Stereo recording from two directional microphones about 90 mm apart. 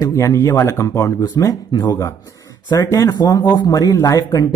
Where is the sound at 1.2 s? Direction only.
45° left (ahead or behind).